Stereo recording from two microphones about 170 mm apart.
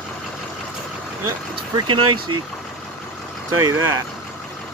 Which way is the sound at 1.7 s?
30° right (ahead or behind).